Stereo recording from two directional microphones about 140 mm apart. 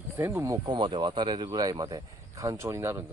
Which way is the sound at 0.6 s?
35° right (ahead or behind).